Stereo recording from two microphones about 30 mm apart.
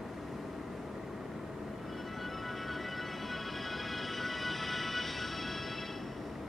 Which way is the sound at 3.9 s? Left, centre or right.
Centre.